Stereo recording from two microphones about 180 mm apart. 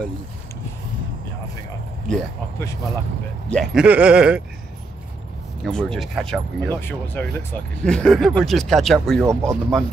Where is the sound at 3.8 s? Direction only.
5° right (ahead or behind).